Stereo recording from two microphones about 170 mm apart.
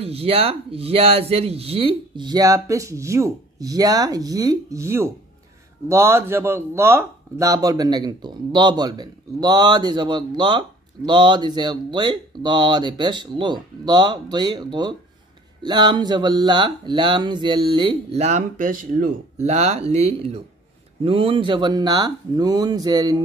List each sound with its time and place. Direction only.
0.0 s speech: 35° right (ahead or behind)